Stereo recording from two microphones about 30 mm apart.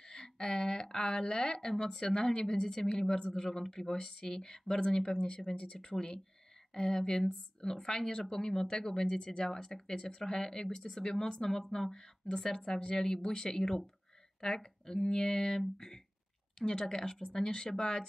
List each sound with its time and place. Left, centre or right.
0.0 s a woman's voice: left
3.8 s a woman's voice: left
4.7 s a woman's voice: left